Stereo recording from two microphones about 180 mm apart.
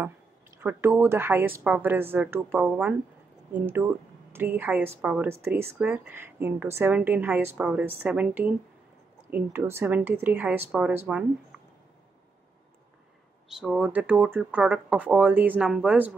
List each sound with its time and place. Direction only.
0.6 s speech: 15° right (ahead or behind)
13.5 s speech: 5° right (ahead or behind)